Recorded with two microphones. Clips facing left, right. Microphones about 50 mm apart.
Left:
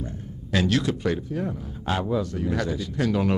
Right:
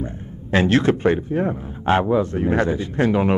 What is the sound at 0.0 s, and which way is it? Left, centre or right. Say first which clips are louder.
Speech: right 5 dB; right.